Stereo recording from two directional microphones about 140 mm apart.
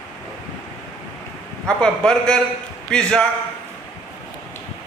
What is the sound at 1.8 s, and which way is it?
A man's voice, 5° left (ahead or behind).